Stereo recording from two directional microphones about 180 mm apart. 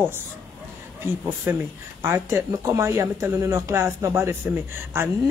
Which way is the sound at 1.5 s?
15° right (ahead or behind).